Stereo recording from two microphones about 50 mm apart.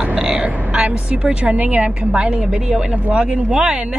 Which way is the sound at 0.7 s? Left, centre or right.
Centre.